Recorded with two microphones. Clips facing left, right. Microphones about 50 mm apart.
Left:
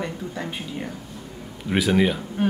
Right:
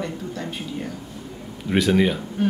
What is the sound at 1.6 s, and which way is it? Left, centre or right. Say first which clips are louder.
Speech: right 1 dB; centre.